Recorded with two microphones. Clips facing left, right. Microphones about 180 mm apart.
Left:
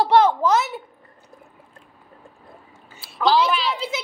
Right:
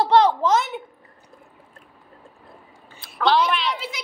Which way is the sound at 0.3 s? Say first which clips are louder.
Left 1 dB; 5° left (ahead or behind).